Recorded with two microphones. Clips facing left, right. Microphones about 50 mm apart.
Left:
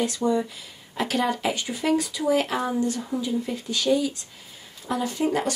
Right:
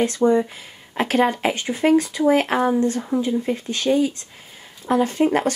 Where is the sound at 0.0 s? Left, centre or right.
Right.